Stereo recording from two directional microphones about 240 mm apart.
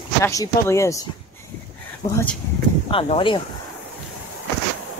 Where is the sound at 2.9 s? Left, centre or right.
Left.